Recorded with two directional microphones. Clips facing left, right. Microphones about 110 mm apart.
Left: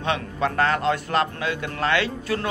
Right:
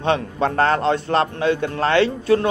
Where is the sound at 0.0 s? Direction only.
35° right (ahead or behind).